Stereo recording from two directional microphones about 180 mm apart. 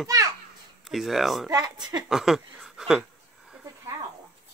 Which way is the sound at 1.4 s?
20° right (ahead or behind).